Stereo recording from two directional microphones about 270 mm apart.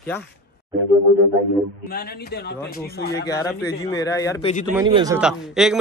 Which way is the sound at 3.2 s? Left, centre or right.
Centre.